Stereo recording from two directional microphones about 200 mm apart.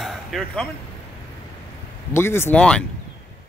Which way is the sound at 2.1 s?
10° left (ahead or behind).